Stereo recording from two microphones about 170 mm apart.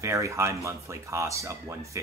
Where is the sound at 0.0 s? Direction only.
15° right (ahead or behind).